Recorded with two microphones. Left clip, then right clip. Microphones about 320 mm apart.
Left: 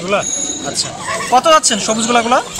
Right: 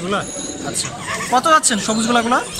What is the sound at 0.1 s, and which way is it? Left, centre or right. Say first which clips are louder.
Speech: left 7 dB; centre.